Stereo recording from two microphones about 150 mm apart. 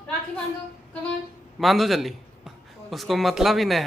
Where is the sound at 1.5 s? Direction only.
Centre (ahead or behind).